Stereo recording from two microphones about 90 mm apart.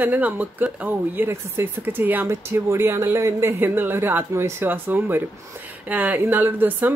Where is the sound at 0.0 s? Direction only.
20° right (ahead or behind).